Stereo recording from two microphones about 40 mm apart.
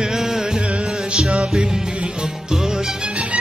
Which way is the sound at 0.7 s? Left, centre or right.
Right.